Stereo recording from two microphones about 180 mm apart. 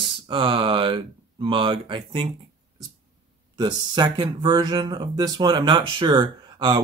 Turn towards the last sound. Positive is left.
turn(degrees=-25)  # may be behind; listen again after turning